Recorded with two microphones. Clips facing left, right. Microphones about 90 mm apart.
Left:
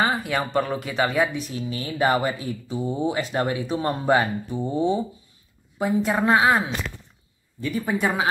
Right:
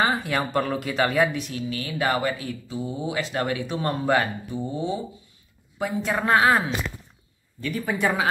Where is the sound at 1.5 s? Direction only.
25° left (ahead or behind).